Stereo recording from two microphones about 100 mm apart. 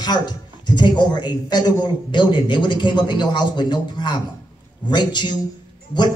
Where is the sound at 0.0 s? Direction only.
45° left (ahead or behind).